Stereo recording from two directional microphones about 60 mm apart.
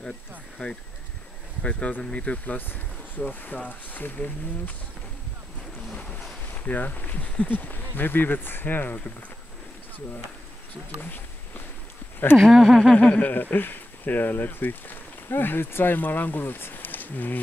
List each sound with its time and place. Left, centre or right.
0.6 s speech: left
6.5 s speech: left
11.0 s speech: left
12.4 s speech: centre
12.9 s speech: left
13.3 s speech: left